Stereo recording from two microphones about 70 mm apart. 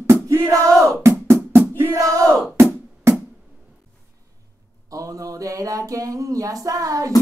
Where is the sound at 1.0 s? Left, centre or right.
Right.